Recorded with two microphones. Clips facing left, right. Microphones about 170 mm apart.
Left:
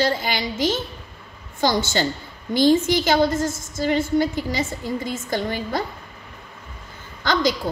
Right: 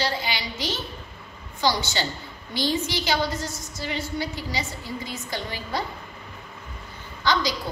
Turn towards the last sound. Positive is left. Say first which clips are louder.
# left 4 dB
turn(degrees=50)  # may be behind; listen again after turning